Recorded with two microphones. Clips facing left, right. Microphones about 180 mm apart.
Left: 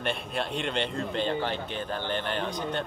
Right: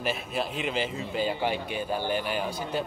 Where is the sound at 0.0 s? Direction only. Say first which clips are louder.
Right 1 dB; 5° right (ahead or behind).